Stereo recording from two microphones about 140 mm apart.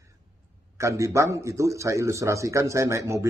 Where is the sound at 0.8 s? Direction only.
20° right (ahead or behind).